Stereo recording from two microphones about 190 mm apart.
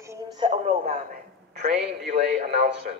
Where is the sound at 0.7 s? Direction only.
35° right (ahead or behind).